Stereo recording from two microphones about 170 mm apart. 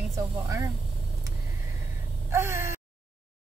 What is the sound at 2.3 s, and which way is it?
Speech, 15° right (ahead or behind).